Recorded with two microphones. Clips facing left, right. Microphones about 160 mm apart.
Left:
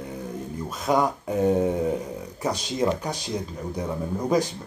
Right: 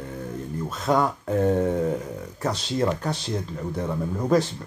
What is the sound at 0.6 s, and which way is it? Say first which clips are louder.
Speech: even; 15° left (ahead or behind).